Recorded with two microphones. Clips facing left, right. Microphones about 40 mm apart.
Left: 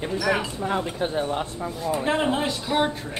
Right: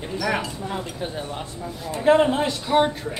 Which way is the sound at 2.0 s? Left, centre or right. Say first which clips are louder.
Right 7 dB; centre.